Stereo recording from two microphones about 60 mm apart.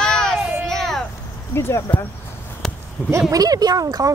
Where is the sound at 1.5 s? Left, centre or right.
Left.